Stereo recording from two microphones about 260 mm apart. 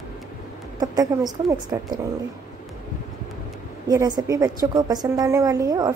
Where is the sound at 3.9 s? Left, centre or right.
Centre.